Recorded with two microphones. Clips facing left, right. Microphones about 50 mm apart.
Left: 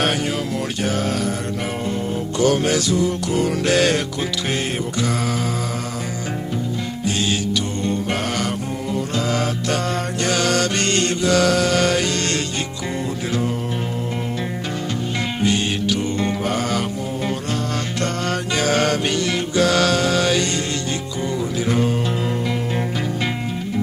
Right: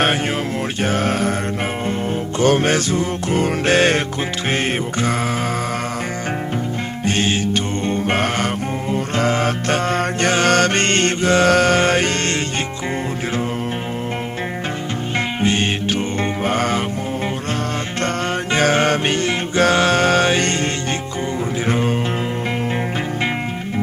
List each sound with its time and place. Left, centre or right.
0.8 s mantra: right
1.9 s music: right
7.1 s music: right
15.4 s music: right
18.0 s music: right